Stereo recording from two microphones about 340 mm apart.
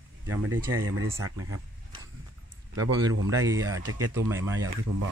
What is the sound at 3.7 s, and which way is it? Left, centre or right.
Speech, right.